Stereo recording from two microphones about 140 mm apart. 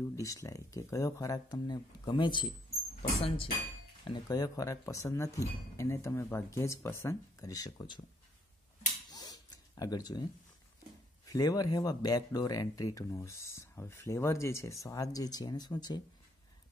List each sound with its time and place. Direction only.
0.1 s speech: 20° left (ahead or behind); by 3.5 s 40° left (ahead or behind)
4.1 s speech: 25° left (ahead or behind)
9.1 s a sound: 30° left (ahead or behind)
11.2 s speech: 25° left (ahead or behind)